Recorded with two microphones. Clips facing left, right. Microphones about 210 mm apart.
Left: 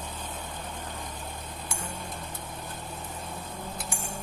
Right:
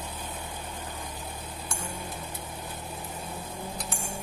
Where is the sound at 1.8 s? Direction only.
10° right (ahead or behind).